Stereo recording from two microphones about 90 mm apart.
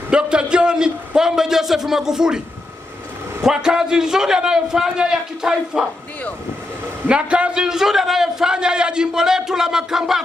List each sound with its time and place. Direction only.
0.1 s a man's voice: 10° right (ahead or behind)
3.4 s a man's voice: 5° right (ahead or behind)
7.1 s a man's voice: 10° right (ahead or behind)